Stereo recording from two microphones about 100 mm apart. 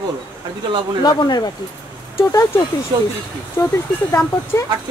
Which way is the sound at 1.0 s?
45° left (ahead or behind).